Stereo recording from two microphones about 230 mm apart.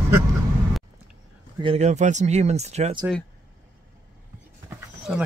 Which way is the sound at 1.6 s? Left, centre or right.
Right.